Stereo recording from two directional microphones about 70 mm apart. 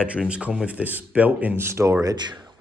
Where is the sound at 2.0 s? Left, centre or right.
Right.